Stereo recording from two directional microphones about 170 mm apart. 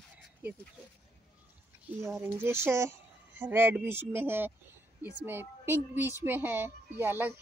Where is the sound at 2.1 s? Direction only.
15° right (ahead or behind).